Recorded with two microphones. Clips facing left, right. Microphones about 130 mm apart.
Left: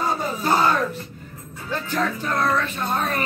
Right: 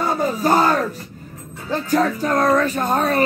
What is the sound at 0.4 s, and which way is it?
Speech, 40° right (ahead or behind).